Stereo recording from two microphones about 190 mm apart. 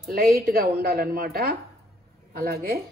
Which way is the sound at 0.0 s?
50° right (ahead or behind).